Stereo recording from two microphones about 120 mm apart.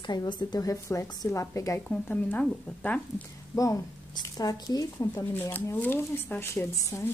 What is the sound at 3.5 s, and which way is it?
Speech, 30° left (ahead or behind).